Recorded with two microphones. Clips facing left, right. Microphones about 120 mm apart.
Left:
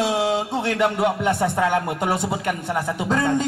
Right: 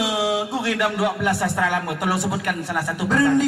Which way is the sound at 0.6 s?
25° left (ahead or behind).